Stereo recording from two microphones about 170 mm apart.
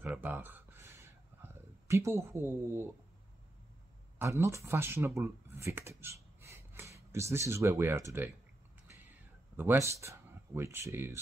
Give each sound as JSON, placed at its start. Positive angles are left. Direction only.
{"t": 0.0, "sound": "a sound", "side_deg": -10}
{"t": 4.2, "sound": "speech", "side_deg": -15}
{"t": 9.6, "sound": "speech", "side_deg": -15}